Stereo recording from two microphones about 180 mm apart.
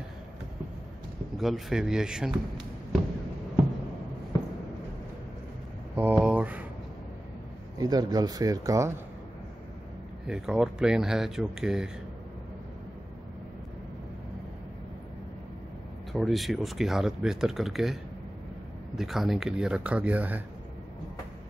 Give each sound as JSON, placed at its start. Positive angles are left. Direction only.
{"t": 1.3, "sound": "speech", "side_deg": 0}
{"t": 5.9, "sound": "a sound", "side_deg": -10}
{"t": 7.8, "sound": "speech", "side_deg": -20}
{"t": 10.2, "sound": "speech", "side_deg": -5}
{"t": 16.1, "sound": "speech", "side_deg": 0}
{"t": 18.9, "sound": "speech", "side_deg": 0}